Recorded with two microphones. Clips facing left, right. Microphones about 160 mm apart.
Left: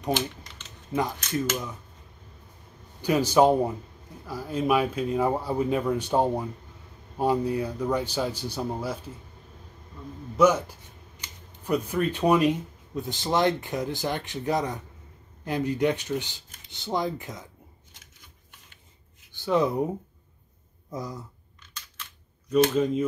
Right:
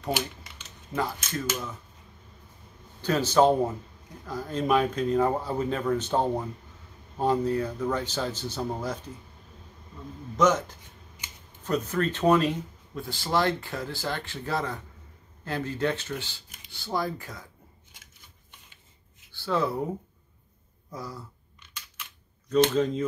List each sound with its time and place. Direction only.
0.9 s speech: 15° left (ahead or behind)
3.0 s speech: 15° left (ahead or behind)
10.3 s speech: 10° left (ahead or behind)
19.3 s speech: 20° left (ahead or behind)
20.9 s speech: 20° left (ahead or behind)
22.5 s speech: 10° left (ahead or behind)